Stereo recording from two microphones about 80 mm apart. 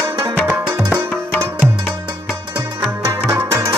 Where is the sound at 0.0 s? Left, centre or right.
Right.